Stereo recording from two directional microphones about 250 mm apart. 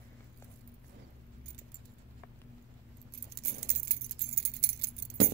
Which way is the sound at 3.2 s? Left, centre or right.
Right.